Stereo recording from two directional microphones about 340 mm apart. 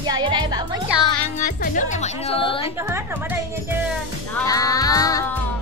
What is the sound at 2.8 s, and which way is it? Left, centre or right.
Speech, centre.